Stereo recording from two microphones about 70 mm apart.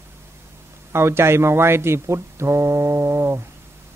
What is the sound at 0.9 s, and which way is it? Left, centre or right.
Speech, right.